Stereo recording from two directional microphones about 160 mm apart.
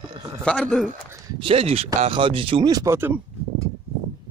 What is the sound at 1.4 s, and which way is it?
Speech, 40° right (ahead or behind).